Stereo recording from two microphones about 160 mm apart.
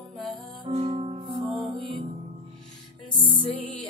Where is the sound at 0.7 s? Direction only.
35° right (ahead or behind).